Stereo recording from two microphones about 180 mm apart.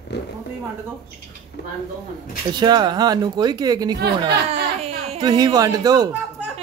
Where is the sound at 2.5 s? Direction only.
25° right (ahead or behind).